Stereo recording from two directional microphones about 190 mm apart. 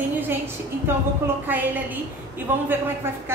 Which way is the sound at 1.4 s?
10° right (ahead or behind).